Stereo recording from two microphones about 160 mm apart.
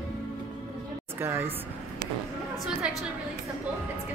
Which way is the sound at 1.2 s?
15° right (ahead or behind).